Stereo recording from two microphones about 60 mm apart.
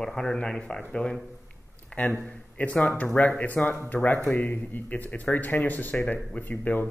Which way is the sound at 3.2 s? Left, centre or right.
Left.